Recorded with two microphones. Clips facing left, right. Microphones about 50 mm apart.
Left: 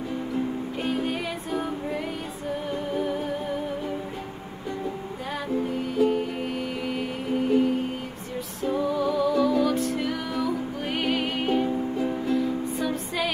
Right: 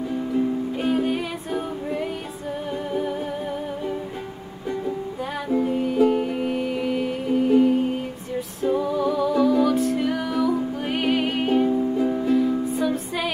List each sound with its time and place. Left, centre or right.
0.7 s music: centre
2.9 s humming: centre
5.5 s music: centre